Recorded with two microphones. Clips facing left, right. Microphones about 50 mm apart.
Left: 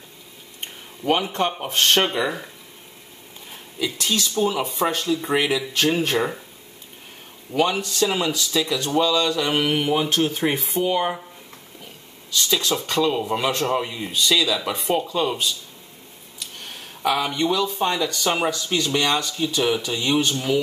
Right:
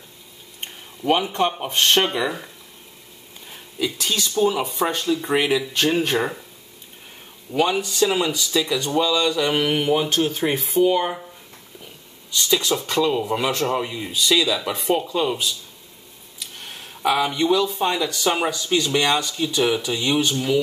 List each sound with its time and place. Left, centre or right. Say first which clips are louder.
1.0 s speech: right 1 dB; centre
3.8 s speech: even; centre
4.3 s speech: right 5 dB; centre
7.5 s speech: right 1 dB; centre
12.4 s speech: right 2 dB; centre
17.0 s speech: right 2 dB; centre